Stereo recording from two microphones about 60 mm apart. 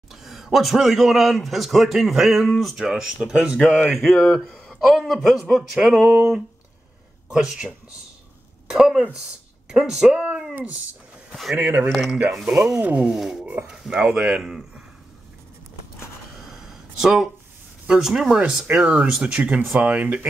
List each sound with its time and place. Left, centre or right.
0.1 s a man's voice: centre
3.9 s a man's voice: centre
5.8 s speech: centre
9.7 s a sound: centre
11.5 s speech: right
11.9 s a man's voice: centre
16.3 s a sound: centre
17.8 s speech: centre; by 20.2 s right